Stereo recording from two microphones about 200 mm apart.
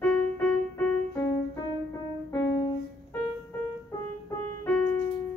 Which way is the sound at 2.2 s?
15° left (ahead or behind).